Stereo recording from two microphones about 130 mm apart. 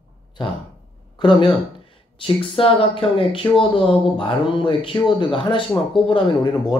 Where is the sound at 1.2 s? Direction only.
35° left (ahead or behind).